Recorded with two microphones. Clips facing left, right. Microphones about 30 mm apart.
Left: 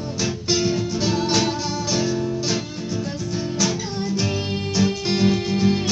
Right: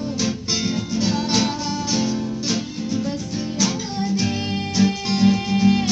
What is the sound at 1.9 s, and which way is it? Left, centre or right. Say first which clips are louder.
Music: even; right.